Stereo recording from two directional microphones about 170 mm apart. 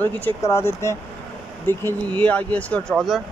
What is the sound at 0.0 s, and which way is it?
Speech, 15° left (ahead or behind).